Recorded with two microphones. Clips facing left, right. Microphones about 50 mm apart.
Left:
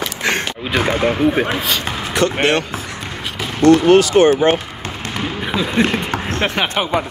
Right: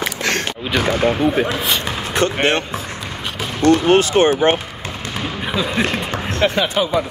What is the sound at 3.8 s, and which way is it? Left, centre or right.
Speech, right.